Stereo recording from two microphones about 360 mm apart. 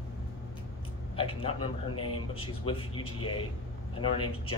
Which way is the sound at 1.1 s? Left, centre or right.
Centre.